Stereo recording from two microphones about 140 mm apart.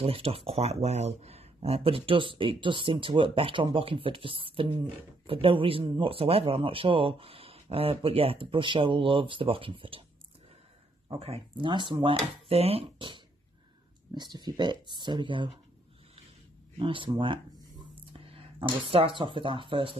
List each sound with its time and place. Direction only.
0.0 s speech: 45° right (ahead or behind)
11.1 s speech: 45° right (ahead or behind)
16.7 s speech: 35° right (ahead or behind)